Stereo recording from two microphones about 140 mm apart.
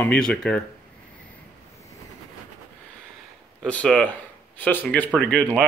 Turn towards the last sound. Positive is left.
turn(degrees=5)  # may be behind; listen again after turning